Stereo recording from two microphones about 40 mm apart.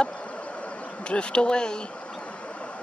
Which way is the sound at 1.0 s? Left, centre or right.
Left.